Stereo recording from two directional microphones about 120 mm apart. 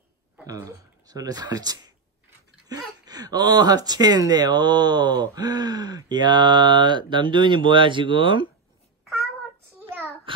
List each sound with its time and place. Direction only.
0.5 s speech: 30° right (ahead or behind)
9.8 s child singing: 15° right (ahead or behind)